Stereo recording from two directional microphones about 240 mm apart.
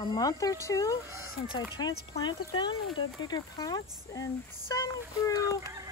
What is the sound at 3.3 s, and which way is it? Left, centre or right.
A woman's voice, centre.